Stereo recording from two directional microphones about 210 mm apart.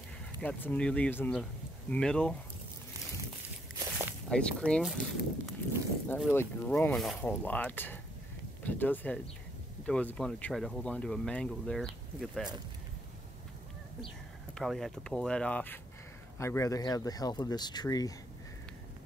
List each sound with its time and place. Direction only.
0.4 s speech: 5° left (ahead or behind)
3.7 s walk: 20° right (ahead or behind)
4.3 s speech: 5° left (ahead or behind)
14.5 s speech: centre (ahead or behind); by 18.1 s 15° left (ahead or behind)